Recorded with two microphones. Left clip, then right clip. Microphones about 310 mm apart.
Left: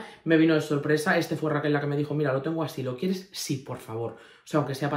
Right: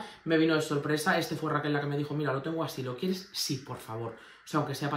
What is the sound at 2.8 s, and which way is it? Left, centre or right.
Speech, centre.